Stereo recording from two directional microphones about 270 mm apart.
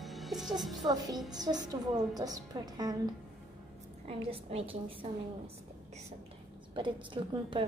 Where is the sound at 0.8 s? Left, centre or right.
Centre.